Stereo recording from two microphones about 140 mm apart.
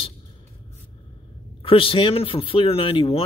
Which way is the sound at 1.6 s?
40° left (ahead or behind).